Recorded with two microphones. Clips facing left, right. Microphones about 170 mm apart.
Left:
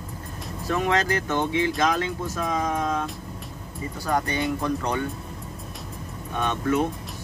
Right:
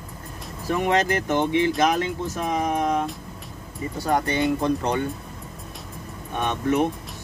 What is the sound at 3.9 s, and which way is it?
Speech, 25° right (ahead or behind).